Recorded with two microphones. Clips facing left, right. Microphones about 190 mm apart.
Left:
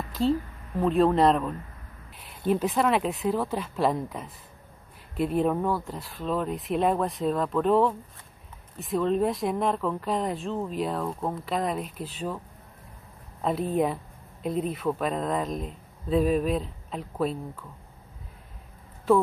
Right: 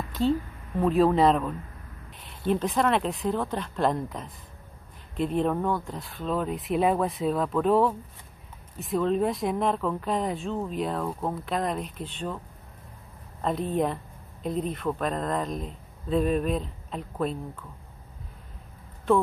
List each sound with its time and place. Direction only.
0.1 s a woman's voice: centre (ahead or behind)
13.4 s speech: 5° left (ahead or behind)
19.1 s speech: centre (ahead or behind)